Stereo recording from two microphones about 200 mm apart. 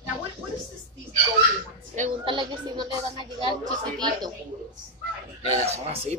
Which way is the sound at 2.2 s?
25° right (ahead or behind).